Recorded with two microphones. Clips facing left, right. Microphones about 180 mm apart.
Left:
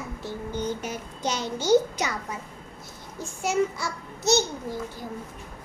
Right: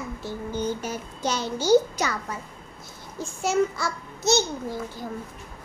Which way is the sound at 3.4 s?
15° left (ahead or behind).